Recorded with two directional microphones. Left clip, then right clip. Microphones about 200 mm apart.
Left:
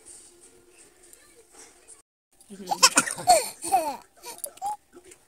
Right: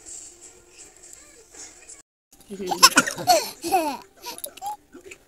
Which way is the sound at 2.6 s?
25° left (ahead or behind).